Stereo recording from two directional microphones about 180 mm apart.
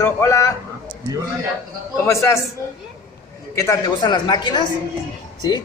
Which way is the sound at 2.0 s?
15° left (ahead or behind).